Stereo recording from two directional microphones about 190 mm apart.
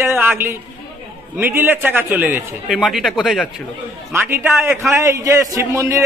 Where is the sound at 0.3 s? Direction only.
10° right (ahead or behind).